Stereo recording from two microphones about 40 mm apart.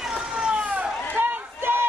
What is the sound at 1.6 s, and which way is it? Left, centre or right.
Run, right.